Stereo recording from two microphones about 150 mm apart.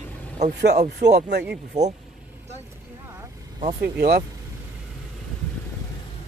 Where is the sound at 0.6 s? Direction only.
90° right.